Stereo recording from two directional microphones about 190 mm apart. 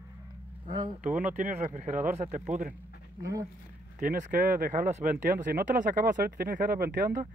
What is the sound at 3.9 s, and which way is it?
Speech, 45° right (ahead or behind).